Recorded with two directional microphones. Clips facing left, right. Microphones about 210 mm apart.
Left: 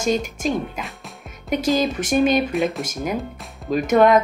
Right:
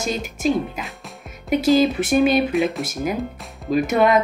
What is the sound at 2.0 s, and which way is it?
Speech, 45° left (ahead or behind).